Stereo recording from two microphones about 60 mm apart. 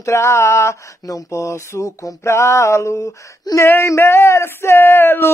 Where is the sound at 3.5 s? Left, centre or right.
Left.